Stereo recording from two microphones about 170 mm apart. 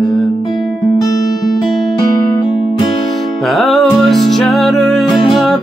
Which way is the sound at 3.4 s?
Centre (ahead or behind).